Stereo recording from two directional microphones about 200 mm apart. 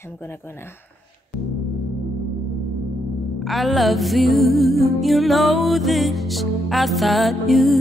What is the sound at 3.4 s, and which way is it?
Music, centre (ahead or behind).